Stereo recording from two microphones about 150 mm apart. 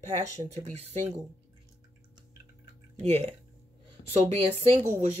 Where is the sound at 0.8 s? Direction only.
45° right (ahead or behind).